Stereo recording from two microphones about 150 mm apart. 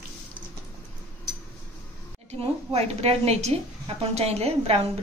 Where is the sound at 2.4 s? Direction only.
45° right (ahead or behind).